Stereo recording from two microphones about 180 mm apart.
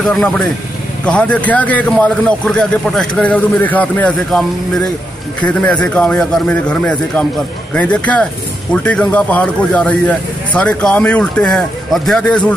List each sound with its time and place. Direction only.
0.0 s a man's voice: centre (ahead or behind)